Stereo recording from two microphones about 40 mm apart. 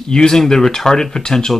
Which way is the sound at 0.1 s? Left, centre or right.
Centre.